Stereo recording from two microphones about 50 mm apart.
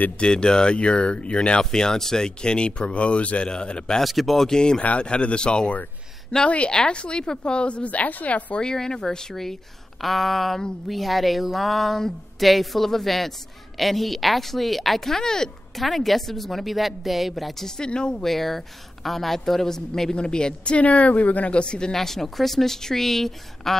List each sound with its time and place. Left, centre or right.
0.2 s a woman's voice: centre
4.0 s a woman's voice: centre; by 8.6 s left
8.6 s a woman's voice: centre
17.6 s a woman's voice: centre
18.2 s a woman's voice: centre
21.9 s speech: centre